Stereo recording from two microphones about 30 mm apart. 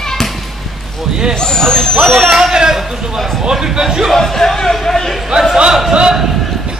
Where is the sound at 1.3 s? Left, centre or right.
Left.